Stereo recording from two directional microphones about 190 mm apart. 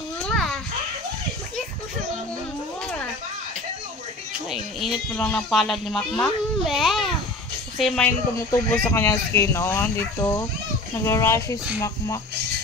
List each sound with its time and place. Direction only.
0.3 s baby cry: centre (ahead or behind)
4.5 s music: centre (ahead or behind)
5.1 s speech: 5° left (ahead or behind)
8.4 s speech: 15° left (ahead or behind)